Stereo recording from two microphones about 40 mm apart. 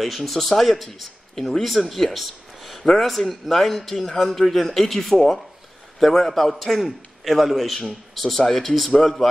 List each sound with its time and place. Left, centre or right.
0.0 s a man's voice: centre
2.8 s a man's voice: centre